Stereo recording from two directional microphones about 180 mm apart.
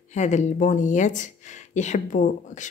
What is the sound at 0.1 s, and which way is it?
Speech, 40° left (ahead or behind).